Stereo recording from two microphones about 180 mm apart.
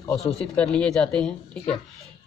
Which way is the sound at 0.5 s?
5° left (ahead or behind).